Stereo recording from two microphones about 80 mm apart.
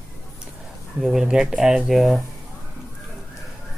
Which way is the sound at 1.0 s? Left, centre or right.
Centre.